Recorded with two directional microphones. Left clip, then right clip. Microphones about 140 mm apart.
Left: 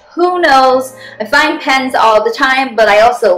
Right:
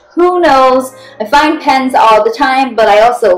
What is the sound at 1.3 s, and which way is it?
A woman's voice, 10° right (ahead or behind).